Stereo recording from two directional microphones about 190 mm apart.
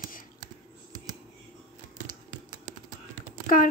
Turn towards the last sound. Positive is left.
turn(degrees=50)  # may be behind; listen again after turning